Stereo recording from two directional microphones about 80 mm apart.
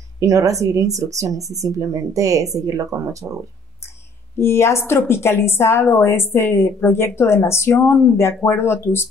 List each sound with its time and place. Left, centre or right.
0.2 s speech: right
4.4 s a woman's voice: left